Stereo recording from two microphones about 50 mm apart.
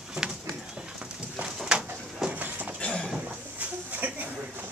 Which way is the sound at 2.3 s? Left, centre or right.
Right.